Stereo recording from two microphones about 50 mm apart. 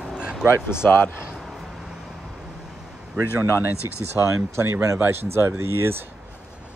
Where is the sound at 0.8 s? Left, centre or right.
Left.